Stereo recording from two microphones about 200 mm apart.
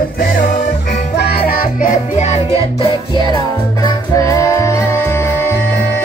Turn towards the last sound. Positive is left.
turn(degrees=10)  # may be behind; listen again after turning